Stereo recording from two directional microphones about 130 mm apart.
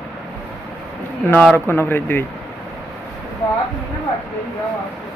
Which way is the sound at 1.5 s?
15° left (ahead or behind).